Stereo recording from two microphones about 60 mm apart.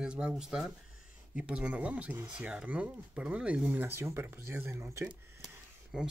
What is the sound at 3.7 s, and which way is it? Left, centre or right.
Speech, right.